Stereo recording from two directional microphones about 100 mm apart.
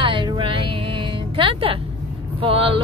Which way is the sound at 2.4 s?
65° right (ahead or behind).